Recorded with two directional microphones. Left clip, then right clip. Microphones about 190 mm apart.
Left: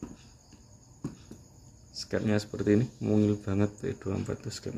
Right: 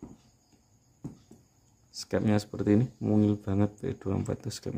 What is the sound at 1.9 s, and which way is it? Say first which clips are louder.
Speech: right 1 dB; 45° right (ahead or behind).